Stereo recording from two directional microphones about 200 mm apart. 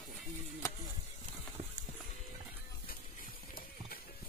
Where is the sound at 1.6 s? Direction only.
25° right (ahead or behind).